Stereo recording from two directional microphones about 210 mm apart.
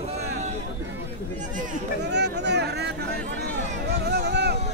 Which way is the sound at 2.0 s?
55° right (ahead or behind).